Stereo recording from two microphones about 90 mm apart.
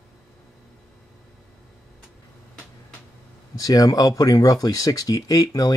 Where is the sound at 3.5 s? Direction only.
45° left (ahead or behind).